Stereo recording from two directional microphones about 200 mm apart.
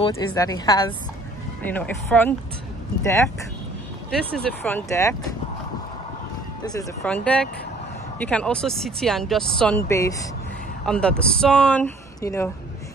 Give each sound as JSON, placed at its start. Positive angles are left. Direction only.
{"t": 0.1, "sound": "a woman's voice", "side_deg": 15}
{"t": 1.6, "sound": "speech", "side_deg": 10}
{"t": 7.1, "sound": "speech", "side_deg": 5}
{"t": 10.9, "sound": "speech", "side_deg": 5}